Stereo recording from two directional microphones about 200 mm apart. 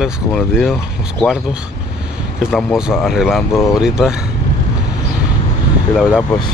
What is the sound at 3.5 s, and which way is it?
Speech, 15° left (ahead or behind).